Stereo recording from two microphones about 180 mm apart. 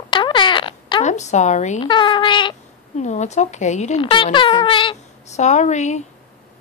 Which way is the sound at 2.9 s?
40° left (ahead or behind).